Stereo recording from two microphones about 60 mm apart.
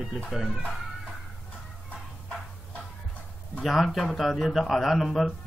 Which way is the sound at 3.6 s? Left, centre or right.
Centre.